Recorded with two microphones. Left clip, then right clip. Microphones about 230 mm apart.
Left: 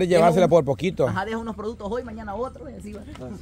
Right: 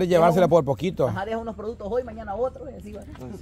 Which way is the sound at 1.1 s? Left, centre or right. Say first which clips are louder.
Left 1 dB; left.